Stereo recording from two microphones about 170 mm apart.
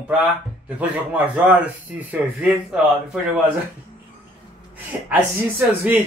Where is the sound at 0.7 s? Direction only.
10° right (ahead or behind).